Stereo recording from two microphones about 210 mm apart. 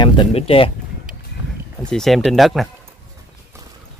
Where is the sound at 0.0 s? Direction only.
25° left (ahead or behind).